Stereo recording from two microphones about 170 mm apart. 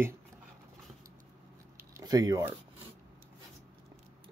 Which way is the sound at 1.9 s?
20° right (ahead or behind).